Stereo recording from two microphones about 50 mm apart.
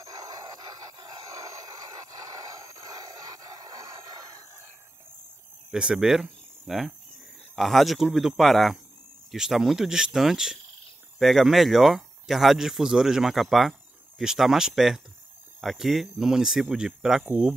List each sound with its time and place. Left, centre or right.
5.7 s speech: centre
17.3 s speech: right